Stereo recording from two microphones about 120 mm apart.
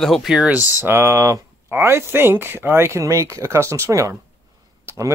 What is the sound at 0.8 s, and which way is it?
Speech, 20° right (ahead or behind).